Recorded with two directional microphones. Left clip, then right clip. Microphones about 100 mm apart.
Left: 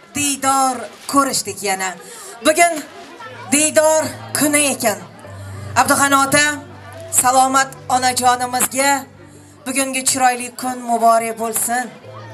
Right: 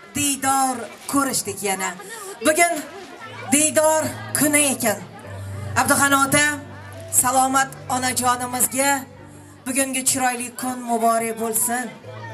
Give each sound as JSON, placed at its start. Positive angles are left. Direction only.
{"t": 0.1, "sound": "a man's voice", "side_deg": 15}